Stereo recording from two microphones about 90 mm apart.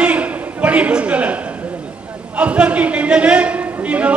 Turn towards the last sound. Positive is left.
turn(degrees=-15)  # may be behind; listen again after turning